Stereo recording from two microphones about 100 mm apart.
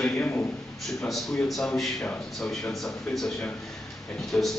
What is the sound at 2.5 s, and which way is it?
Speech, 5° left (ahead or behind).